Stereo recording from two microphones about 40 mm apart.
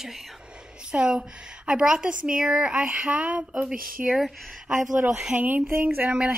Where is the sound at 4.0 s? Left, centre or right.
Centre.